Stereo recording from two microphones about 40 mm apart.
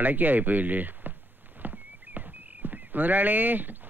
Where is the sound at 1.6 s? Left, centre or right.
Right.